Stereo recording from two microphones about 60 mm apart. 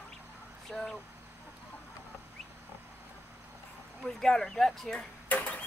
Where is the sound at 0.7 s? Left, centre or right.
Centre.